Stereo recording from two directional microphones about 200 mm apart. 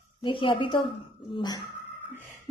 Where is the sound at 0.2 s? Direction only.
25° left (ahead or behind).